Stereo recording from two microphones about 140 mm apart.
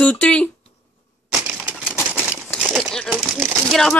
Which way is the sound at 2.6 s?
5° right (ahead or behind).